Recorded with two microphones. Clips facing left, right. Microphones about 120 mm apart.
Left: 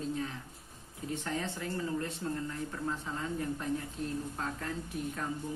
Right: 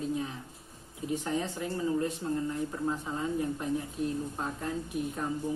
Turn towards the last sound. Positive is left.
turn(degrees=-15)  # may be behind; listen again after turning